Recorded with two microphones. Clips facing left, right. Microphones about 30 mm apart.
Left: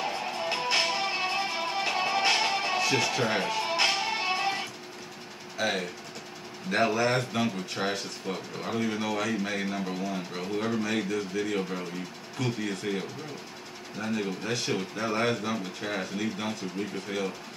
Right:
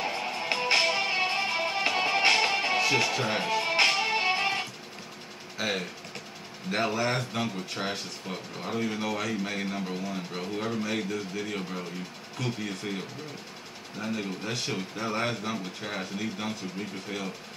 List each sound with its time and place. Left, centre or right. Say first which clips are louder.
0.0 s music: even; centre
2.9 s speech: even; centre
3.8 s music: right 3 dB; centre
5.6 s speech: left 2 dB; centre